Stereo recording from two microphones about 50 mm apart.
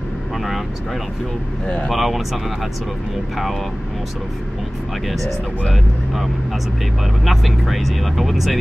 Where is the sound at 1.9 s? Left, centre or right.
Centre.